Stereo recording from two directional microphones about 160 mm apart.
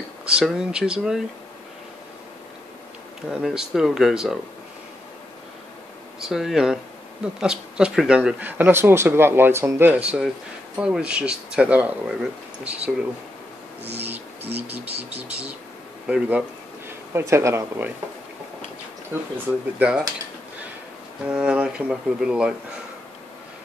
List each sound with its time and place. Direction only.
0.4 s speech: 5° right (ahead or behind)
3.3 s speech: centre (ahead or behind)
6.1 s speech: centre (ahead or behind)
13.9 s speech: 10° right (ahead or behind)
19.3 s speech: 10° right (ahead or behind)
21.3 s speech: 5° right (ahead or behind)